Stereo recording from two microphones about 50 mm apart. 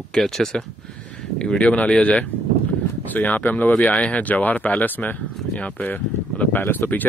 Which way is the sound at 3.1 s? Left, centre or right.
Left.